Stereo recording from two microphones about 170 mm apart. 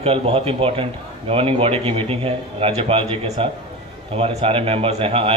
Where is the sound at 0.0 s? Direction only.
30° right (ahead or behind).